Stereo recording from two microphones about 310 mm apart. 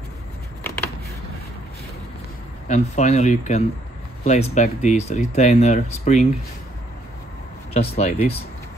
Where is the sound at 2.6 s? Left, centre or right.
Left.